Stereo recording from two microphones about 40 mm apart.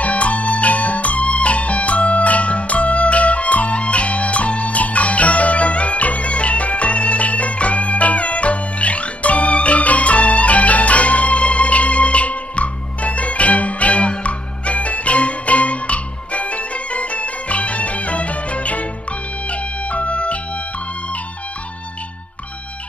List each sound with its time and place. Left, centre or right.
0.0 s music: left
19.5 s organ: left